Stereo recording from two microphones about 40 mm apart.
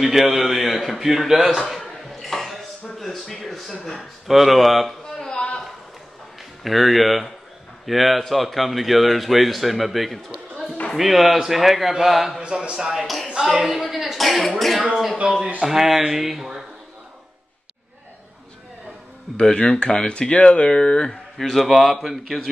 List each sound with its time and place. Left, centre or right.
0.0 s speech: centre
1.3 s speech: centre
1.8 s a sound: centre
4.3 s speech: centre
6.6 s speech: centre
12.4 s speech: right
12.9 s speech: centre
19.3 s speech: left
21.4 s a man's voice: centre